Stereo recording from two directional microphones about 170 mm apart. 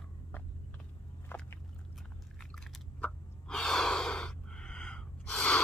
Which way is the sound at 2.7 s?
5° left (ahead or behind).